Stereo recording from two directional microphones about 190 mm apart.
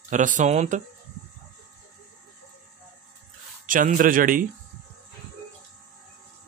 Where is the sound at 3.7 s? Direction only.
45° right (ahead or behind).